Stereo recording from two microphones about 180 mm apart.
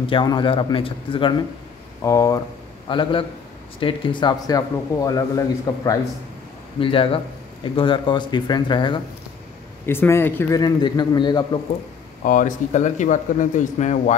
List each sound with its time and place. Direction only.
0.0 s speech: 25° left (ahead or behind)
2.0 s speech: 20° left (ahead or behind)
2.9 s speech: 30° left (ahead or behind)
6.8 s speech: 30° left (ahead or behind)
9.8 s speech: 15° left (ahead or behind)
10.6 s speech: 25° left (ahead or behind)
12.3 s speech: 45° left (ahead or behind)